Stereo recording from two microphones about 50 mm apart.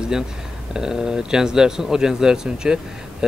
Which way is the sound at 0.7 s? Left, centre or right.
Centre.